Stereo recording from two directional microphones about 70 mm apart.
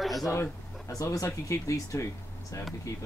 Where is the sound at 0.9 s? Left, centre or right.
Left.